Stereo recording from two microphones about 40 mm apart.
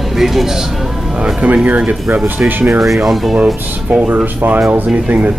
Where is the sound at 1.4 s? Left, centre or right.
Right.